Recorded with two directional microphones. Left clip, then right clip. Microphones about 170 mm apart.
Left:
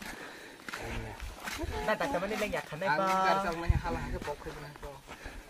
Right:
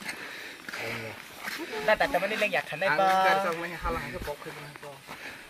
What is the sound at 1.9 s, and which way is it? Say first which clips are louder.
Speech: right 7 dB; 65° left (ahead or behind).